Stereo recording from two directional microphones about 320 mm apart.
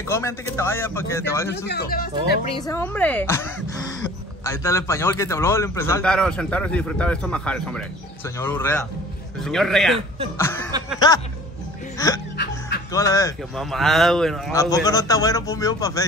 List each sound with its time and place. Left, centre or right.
0.1 s speech: centre
1.7 s speech: left
2.5 s speech: centre
4.5 s a man's voice: centre
9.9 s speech: centre
10.3 s speech: centre
12.0 s speech: centre
12.4 s music: left
12.9 s speech: centre